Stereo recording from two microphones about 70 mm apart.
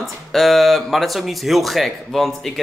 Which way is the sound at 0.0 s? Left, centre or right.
Centre.